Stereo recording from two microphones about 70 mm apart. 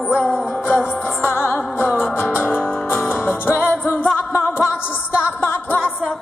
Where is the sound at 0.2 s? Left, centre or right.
Left.